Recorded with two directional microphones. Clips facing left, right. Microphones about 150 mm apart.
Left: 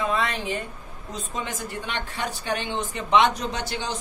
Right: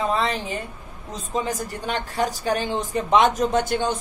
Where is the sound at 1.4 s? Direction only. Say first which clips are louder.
Right 4 dB; 40° right (ahead or behind).